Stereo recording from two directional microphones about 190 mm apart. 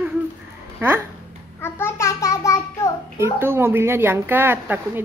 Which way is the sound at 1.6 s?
15° left (ahead or behind).